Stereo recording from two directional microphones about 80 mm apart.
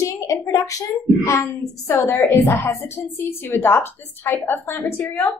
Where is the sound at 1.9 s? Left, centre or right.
Left.